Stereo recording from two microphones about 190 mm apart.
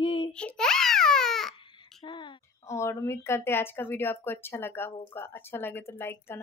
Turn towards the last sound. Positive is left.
turn(degrees=10)  # may be behind; listen again after turning